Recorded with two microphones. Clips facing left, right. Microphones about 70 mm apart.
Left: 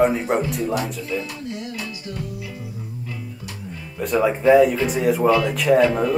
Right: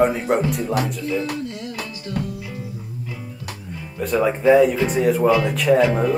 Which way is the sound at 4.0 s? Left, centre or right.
Centre.